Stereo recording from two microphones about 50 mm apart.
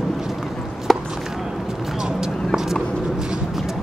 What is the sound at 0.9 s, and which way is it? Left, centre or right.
Chop, centre.